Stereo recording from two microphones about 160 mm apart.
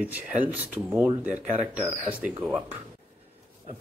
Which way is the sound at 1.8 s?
40° right (ahead or behind).